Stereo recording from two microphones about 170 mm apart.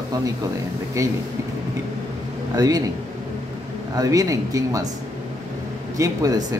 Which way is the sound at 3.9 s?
20° right (ahead or behind).